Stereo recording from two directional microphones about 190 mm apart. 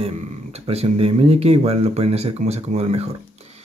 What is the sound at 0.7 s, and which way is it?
Speech, 30° right (ahead or behind).